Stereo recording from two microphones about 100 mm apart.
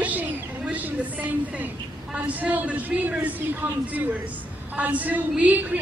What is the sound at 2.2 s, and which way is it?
A woman's voice, 15° right (ahead or behind).